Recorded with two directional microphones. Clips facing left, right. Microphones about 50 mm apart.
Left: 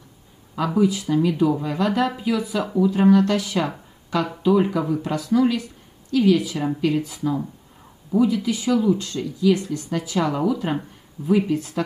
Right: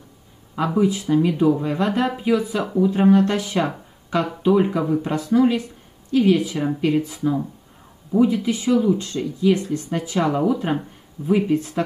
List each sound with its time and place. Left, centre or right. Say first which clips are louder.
0.7 s speech: right 1 dB; right